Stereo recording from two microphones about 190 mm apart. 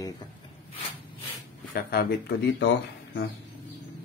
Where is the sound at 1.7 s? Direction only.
55° left (ahead or behind).